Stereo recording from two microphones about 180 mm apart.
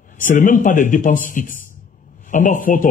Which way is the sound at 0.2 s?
45° left (ahead or behind).